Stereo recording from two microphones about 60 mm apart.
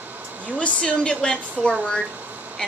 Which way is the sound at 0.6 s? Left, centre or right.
Centre.